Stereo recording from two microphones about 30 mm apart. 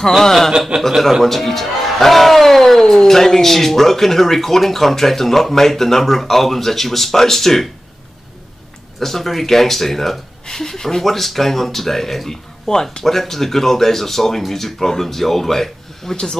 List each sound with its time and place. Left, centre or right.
0.2 s speech: centre
9.0 s speech: centre